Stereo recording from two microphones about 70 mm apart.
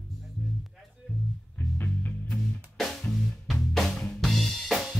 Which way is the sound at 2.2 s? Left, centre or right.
Centre.